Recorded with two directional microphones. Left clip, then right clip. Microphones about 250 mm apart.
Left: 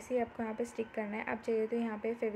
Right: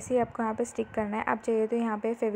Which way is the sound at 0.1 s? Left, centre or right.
Right.